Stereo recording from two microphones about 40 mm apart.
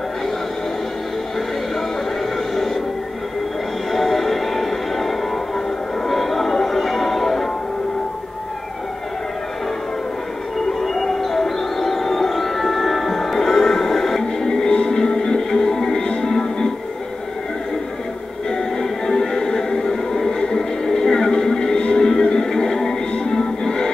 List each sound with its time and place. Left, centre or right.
2.5 s music: centre
3.9 s music: centre
10.8 s music: centre
18.5 s music: centre